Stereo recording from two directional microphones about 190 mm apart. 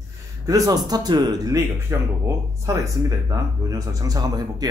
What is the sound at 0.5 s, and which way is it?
Speech, 20° right (ahead or behind).